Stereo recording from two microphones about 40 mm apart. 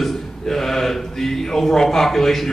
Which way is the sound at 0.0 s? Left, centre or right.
Centre.